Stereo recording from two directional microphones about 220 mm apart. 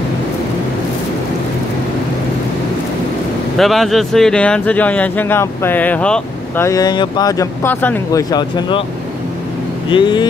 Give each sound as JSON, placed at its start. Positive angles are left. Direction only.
{"t": 3.5, "sound": "speech", "side_deg": 0}
{"t": 9.8, "sound": "speech", "side_deg": 20}